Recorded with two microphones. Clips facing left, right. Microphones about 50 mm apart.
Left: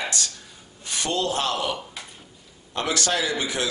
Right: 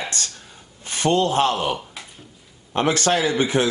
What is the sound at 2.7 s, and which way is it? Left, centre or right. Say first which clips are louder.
Speech: right 5 dB; right.